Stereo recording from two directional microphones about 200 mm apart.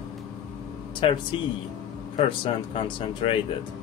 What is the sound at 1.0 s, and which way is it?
Speech, 25° left (ahead or behind).